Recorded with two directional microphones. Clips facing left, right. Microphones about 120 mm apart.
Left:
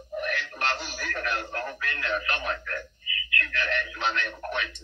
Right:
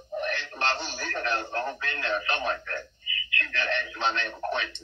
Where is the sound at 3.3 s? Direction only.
25° right (ahead or behind).